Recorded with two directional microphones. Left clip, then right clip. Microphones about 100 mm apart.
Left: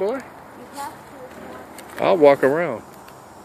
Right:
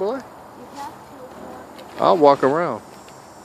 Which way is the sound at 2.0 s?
45° right (ahead or behind).